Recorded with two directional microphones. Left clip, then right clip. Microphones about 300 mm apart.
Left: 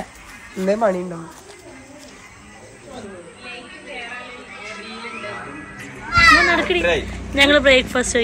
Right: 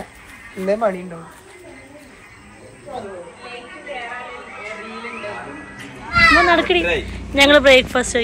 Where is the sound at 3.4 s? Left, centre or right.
Centre.